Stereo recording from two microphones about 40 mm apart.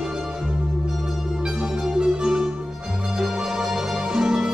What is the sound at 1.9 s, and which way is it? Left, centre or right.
Music, centre.